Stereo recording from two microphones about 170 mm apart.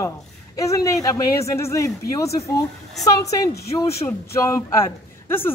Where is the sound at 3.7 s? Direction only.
20° left (ahead or behind).